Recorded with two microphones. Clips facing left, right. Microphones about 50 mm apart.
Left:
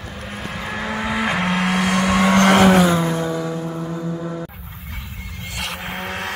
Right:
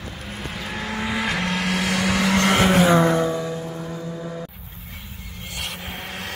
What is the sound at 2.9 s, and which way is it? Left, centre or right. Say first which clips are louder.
Vehicle: right 3 dB; right.